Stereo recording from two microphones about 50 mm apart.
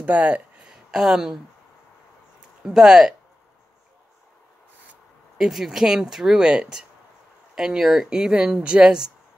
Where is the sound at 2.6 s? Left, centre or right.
Centre.